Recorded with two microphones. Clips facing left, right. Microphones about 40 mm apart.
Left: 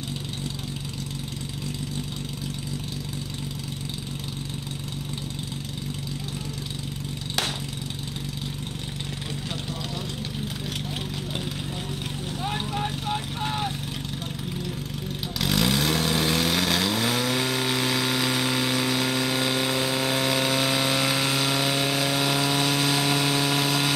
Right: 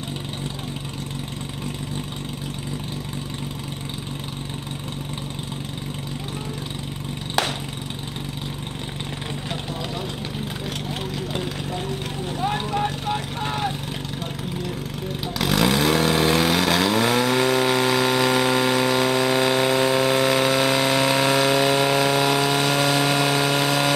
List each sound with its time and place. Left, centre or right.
12.7 s vehicle: centre
15.3 s vehicle: centre